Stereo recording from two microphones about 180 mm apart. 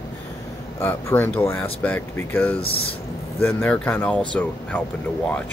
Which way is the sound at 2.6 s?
30° left (ahead or behind).